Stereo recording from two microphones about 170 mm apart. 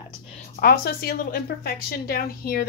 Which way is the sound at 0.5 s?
60° left (ahead or behind).